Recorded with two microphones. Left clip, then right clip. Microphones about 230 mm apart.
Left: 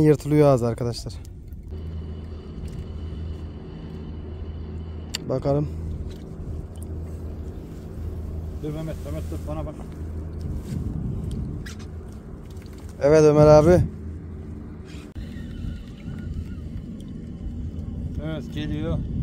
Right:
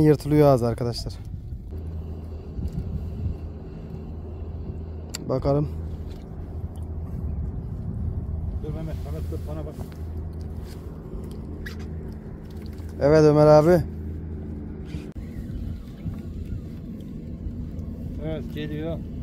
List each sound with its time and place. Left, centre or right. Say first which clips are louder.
0.0 s speech: even; centre
5.3 s speech: even; centre
13.0 s speech: left 1 dB; centre
18.2 s speech: even; left